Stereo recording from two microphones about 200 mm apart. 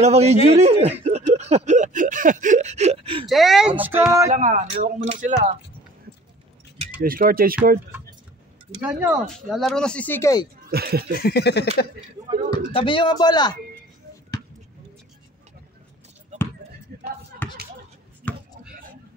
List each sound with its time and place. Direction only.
0.0 s a sound: 35° right (ahead or behind)
0.5 s speech: 35° right (ahead or behind)
1.3 s a sound: 35° right (ahead or behind)
3.3 s speech: centre (ahead or behind)
4.3 s a sound: 35° right (ahead or behind)
7.0 s speech: 45° right (ahead or behind)
8.8 s speech: 10° right (ahead or behind); by 10.4 s 10° left (ahead or behind)
10.7 s speech: 50° right (ahead or behind)
11.1 s a sound: 50° left (ahead or behind)
12.7 s speech: 25° left (ahead or behind)
16.9 s basketball bounce: 50° right (ahead or behind)
18.3 s chopping: 5° left (ahead or behind)